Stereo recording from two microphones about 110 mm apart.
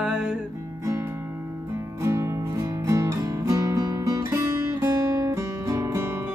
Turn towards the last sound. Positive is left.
turn(degrees=-25)  # may be behind; listen again after turning